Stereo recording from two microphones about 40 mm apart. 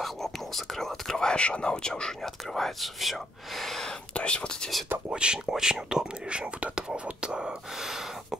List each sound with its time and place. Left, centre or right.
0.0 s whispering: centre
1.3 s speech: left
2.2 s speech: centre
4.1 s speech: left
5.1 s speech: right
7.8 s gasp: centre